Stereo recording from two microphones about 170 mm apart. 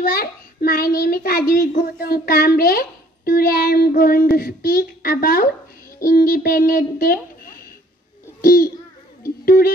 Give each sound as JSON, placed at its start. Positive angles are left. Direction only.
{"t": 0.0, "sound": "speech", "side_deg": 60}
{"t": 1.5, "sound": "speech", "side_deg": 50}
{"t": 9.2, "sound": "music", "side_deg": 60}